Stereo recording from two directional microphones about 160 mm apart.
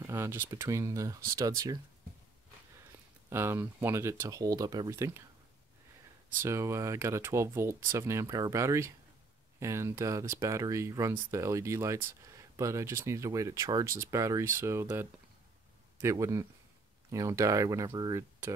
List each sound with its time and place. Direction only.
0.0 s speech: 15° right (ahead or behind)
3.3 s speech: 15° right (ahead or behind)
6.4 s speech: 15° right (ahead or behind)